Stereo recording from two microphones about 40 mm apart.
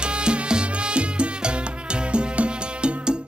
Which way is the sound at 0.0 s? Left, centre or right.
Right.